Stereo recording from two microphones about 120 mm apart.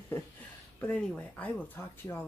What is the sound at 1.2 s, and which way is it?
Speech, 15° left (ahead or behind).